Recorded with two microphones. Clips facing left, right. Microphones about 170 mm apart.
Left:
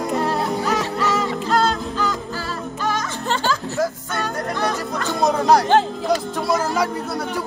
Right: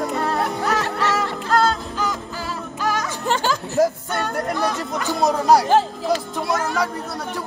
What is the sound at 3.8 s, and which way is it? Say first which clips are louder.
Music: right 6 dB; 35° right (ahead or behind).